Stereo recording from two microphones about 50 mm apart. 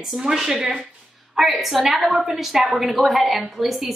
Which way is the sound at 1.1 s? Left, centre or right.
Centre.